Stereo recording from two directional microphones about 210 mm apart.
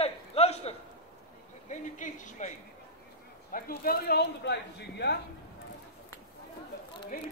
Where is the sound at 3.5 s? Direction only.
45° left (ahead or behind).